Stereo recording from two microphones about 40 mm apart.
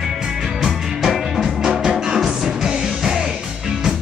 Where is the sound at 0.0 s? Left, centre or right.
Centre.